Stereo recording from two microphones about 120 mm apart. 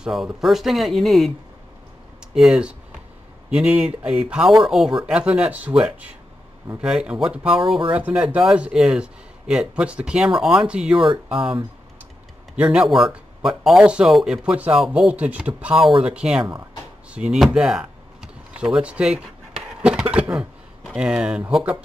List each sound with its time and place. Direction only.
0.0 s speech: 5° right (ahead or behind)
2.3 s speech: centre (ahead or behind)
11.3 s speech: 45° right (ahead or behind)
12.5 s speech: 5° right (ahead or behind)
17.6 s a sound: 5° right (ahead or behind)
20.3 s speech: 5° right (ahead or behind)